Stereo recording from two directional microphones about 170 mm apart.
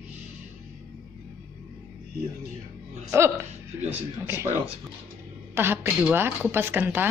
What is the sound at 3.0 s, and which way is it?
Speech, 15° right (ahead or behind).